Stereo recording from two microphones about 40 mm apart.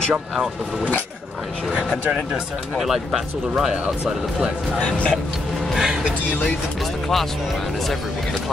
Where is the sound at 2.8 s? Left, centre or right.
Centre.